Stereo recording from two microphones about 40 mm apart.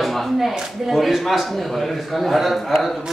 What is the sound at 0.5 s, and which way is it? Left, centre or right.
Speech, centre.